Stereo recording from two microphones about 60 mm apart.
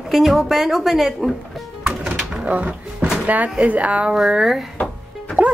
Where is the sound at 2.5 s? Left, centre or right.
Centre.